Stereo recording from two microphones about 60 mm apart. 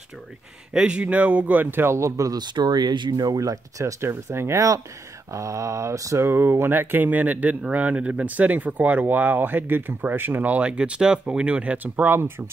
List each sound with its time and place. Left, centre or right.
0.7 s speech: centre; by 2.3 s right
3.1 s speech: right
4.1 s speech: right
5.3 s mantra: right
6.1 s speech: right